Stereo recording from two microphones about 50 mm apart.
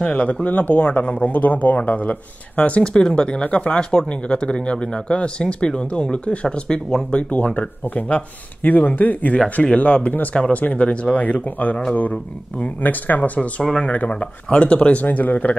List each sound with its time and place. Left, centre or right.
0.0 s speech: left
2.8 s speech: centre
13.6 s speech: centre